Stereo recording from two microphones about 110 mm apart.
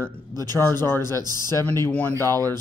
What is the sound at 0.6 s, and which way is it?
Speech, 20° left (ahead or behind).